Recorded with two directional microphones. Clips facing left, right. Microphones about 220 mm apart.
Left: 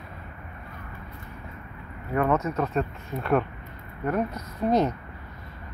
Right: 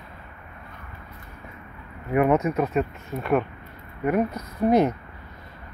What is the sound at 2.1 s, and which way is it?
Speech, 15° right (ahead or behind).